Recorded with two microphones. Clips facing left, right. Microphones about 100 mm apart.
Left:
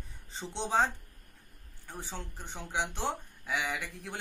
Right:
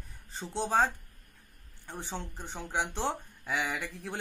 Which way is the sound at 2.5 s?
15° right (ahead or behind).